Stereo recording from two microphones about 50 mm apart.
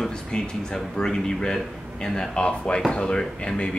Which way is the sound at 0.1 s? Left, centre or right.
Centre.